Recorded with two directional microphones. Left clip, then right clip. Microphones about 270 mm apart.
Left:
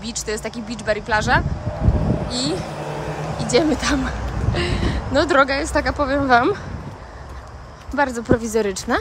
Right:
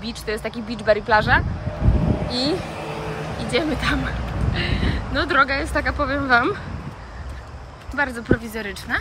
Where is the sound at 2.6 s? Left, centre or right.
Left.